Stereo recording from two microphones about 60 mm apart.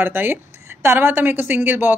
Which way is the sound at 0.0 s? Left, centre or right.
Right.